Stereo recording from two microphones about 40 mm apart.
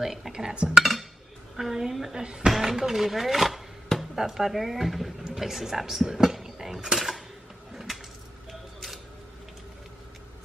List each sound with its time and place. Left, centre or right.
0.0 s speech: centre
1.6 s a woman's voice: centre
7.7 s coin: centre
8.5 s scissors: centre